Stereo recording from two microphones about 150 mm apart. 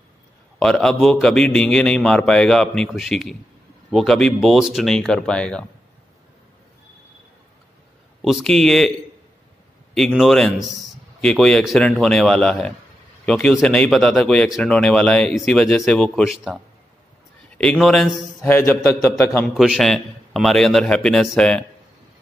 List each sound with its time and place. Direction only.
0.6 s speech: 5° left (ahead or behind)
8.2 s speech: centre (ahead or behind)
9.9 s speech: centre (ahead or behind)
17.6 s speech: 5° left (ahead or behind)
18.4 s a man's voice: 15° left (ahead or behind)
19.4 s speech: centre (ahead or behind)